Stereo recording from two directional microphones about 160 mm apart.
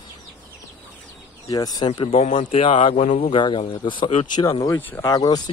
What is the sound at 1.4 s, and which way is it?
Speech, 25° left (ahead or behind).